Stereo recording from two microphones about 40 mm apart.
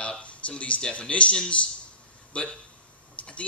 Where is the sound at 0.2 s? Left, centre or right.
Left.